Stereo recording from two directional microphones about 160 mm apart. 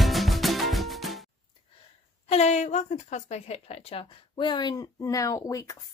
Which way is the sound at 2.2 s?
45° left (ahead or behind).